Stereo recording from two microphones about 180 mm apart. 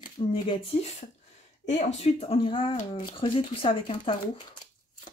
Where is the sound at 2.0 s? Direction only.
35° left (ahead or behind).